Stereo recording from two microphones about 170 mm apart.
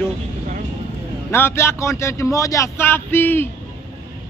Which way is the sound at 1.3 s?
15° left (ahead or behind).